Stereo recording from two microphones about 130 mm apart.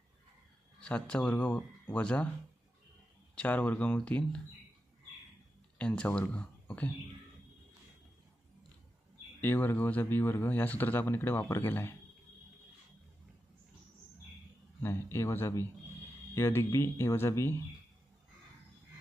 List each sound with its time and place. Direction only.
0.7 s speech: 10° left (ahead or behind)
3.3 s speech: 10° left (ahead or behind)
5.8 s speech: 10° left (ahead or behind)
9.4 s speech: 15° left (ahead or behind)
14.8 s speech: 20° left (ahead or behind)